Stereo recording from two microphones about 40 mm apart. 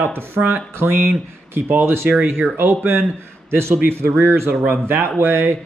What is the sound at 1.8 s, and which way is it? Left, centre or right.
Speech, right.